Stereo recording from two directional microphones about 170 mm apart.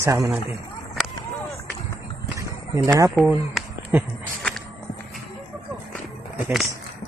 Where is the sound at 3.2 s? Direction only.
5° right (ahead or behind).